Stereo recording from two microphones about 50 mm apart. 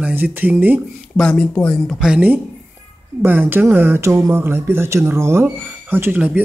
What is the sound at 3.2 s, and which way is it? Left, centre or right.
Speech, right.